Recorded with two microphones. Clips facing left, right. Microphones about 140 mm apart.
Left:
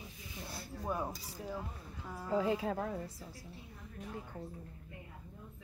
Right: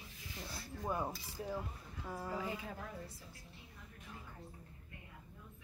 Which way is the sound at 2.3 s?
90° left.